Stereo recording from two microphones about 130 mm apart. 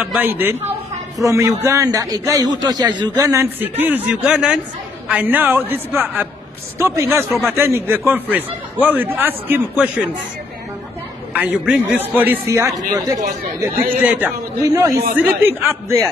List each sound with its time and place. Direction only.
0.0 s a man's voice: 10° right (ahead or behind)
11.3 s a man's voice: 10° right (ahead or behind); by 13.2 s 25° right (ahead or behind)
14.0 s a man's voice: 15° right (ahead or behind)
14.7 s a man's voice: 25° right (ahead or behind)
15.1 s a man's voice: 15° right (ahead or behind)